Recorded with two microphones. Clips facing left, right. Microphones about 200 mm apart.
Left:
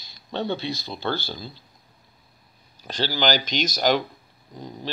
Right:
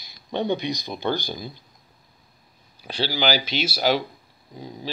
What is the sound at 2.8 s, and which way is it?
Speech, 10° right (ahead or behind).